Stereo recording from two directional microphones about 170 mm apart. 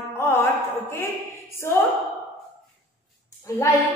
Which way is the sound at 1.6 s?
15° left (ahead or behind).